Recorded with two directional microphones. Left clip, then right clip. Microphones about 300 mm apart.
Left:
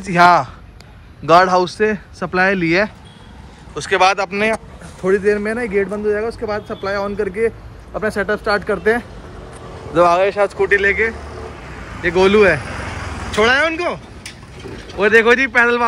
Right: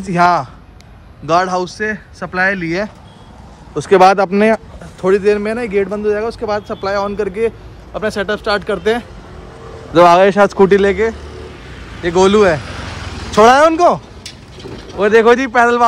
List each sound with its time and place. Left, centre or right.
0.0 s speech: centre
3.7 s speech: right
5.0 s speech: centre
9.9 s a man's voice: right
10.7 s speech: centre
15.0 s speech: centre